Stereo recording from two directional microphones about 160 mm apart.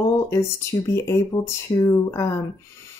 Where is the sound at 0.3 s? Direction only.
20° left (ahead or behind).